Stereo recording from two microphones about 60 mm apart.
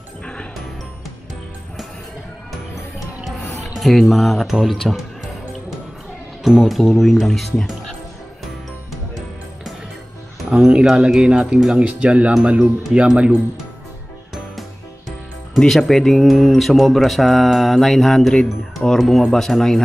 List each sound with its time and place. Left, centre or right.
0.2 s music: centre
3.7 s speech: centre
6.4 s speech: centre
10.5 s speech: centre
15.5 s a man's voice: centre